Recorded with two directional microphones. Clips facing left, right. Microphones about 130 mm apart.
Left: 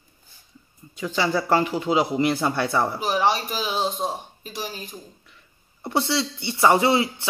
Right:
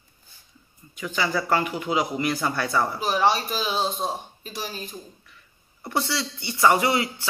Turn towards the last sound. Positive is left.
turn(degrees=25)  # may be behind; listen again after turning